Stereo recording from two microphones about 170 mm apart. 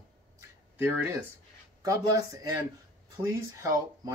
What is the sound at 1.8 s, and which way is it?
Speech, 20° right (ahead or behind).